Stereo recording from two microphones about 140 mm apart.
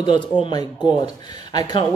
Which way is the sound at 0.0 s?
35° left (ahead or behind).